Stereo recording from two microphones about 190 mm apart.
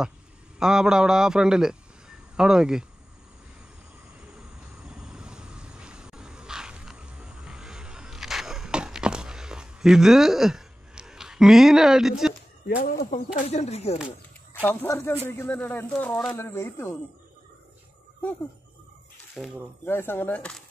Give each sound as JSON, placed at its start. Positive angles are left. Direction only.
{"t": 0.6, "sound": "speech", "side_deg": -5}
{"t": 4.8, "sound": "wild animals", "side_deg": -5}
{"t": 12.6, "sound": "speech", "side_deg": 55}
{"t": 13.1, "sound": "speech", "side_deg": 35}
{"t": 14.5, "sound": "speech", "side_deg": 10}
{"t": 19.8, "sound": "speech", "side_deg": 10}